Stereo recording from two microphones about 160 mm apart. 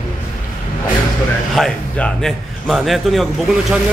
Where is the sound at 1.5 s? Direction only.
5° left (ahead or behind).